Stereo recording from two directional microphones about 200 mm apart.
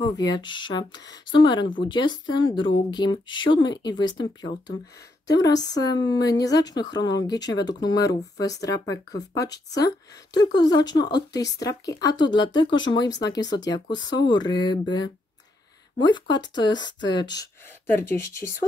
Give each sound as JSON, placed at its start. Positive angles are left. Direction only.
{"t": 0.0, "sound": "a woman's voice", "side_deg": 20}